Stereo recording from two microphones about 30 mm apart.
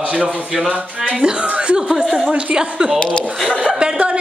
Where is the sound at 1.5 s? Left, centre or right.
Right.